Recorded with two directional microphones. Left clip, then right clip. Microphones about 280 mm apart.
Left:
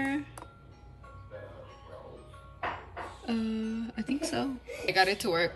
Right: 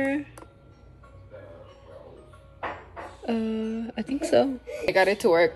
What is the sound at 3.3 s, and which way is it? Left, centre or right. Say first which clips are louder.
Speech: right 7 dB; centre.